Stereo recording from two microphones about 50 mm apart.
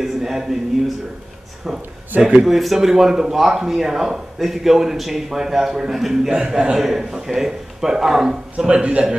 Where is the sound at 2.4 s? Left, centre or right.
Centre.